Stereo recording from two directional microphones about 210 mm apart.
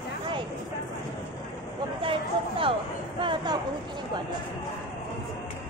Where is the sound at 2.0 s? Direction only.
25° right (ahead or behind).